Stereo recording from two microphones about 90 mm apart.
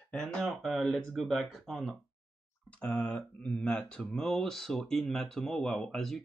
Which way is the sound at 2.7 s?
20° left (ahead or behind).